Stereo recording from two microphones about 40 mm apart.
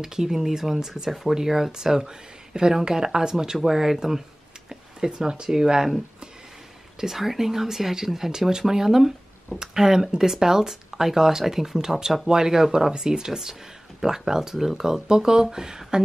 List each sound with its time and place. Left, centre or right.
0.0 s speech: centre
4.6 s a sound: centre
5.5 s speech: centre
7.0 s speech: centre